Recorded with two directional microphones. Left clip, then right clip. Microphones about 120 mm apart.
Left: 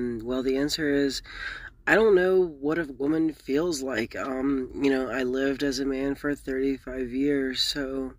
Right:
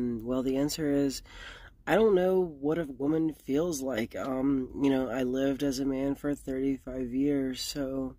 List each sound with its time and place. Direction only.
0.0 s speech: 35° right (ahead or behind)